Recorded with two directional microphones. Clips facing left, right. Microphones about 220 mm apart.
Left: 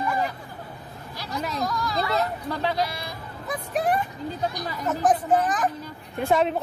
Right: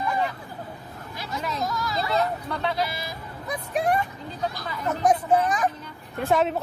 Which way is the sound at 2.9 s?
Centre (ahead or behind).